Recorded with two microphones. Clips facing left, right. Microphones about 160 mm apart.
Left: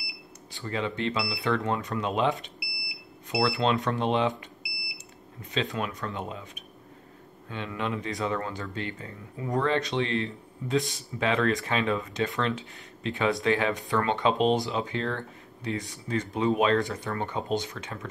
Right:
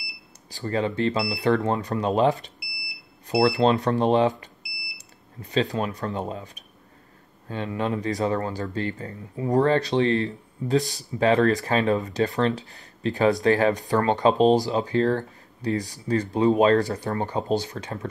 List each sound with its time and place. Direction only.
0.5 s speech: 40° right (ahead or behind)